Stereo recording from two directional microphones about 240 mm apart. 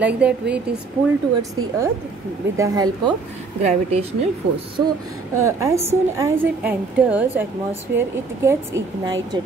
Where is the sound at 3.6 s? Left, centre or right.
Right.